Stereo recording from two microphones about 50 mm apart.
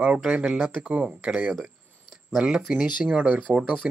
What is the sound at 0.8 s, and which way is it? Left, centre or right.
Speech, right.